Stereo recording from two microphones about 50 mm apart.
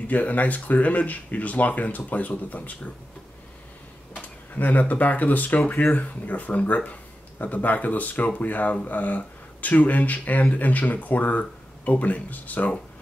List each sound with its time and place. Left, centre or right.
0.1 s speech: left
4.6 s speech: left